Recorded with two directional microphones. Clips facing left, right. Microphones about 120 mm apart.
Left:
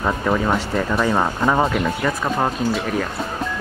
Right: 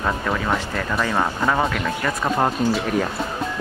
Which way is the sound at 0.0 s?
10° left (ahead or behind).